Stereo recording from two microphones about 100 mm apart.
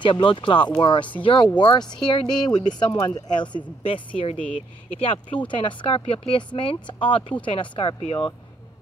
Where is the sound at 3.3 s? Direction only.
60° left (ahead or behind).